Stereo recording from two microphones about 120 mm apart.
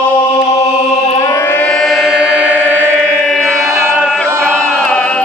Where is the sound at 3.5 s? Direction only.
20° right (ahead or behind).